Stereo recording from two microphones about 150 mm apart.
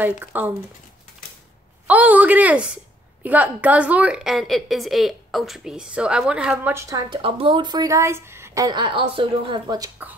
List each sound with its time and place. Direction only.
0.0 s a woman's voice: 10° right (ahead or behind)
1.9 s a woman's voice: 10° right (ahead or behind)
7.1 s a woman's voice: 35° right (ahead or behind)